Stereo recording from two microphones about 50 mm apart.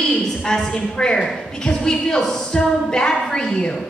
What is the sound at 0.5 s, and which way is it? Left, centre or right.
A woman's voice, centre.